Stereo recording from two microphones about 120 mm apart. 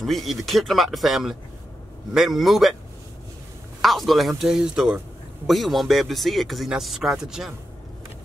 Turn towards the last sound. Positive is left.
turn(degrees=-5)  # may be behind; listen again after turning